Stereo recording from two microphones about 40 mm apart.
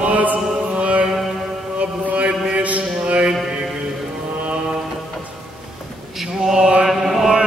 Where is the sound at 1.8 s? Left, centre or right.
Right.